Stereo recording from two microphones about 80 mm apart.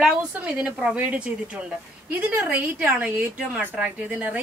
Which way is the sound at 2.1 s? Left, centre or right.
Right.